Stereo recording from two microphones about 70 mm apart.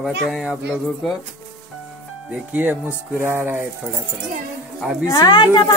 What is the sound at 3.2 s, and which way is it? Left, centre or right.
Music, right.